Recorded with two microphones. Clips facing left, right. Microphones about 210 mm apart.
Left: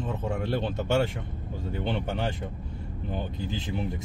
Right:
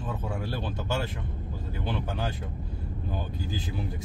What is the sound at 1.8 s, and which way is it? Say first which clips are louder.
Speech: left 3 dB; 25° left (ahead or behind).